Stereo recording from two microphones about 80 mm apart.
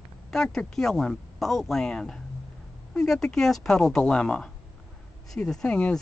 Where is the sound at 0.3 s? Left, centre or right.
Centre.